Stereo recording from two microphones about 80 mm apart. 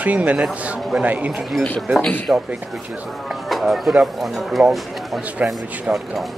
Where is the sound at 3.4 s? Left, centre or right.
Centre.